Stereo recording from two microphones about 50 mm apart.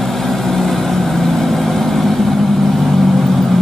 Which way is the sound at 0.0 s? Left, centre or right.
Centre.